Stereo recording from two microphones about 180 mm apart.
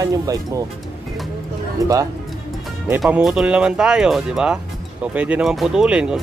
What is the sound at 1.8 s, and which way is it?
Speech, 20° right (ahead or behind).